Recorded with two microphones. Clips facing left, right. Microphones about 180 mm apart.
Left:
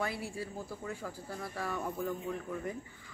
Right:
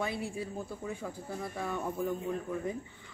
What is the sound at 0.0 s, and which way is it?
A woman's voice, 20° right (ahead or behind).